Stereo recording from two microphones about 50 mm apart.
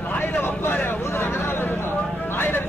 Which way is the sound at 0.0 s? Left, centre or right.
Left.